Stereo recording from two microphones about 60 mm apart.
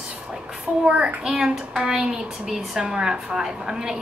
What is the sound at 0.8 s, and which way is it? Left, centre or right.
Speech, centre.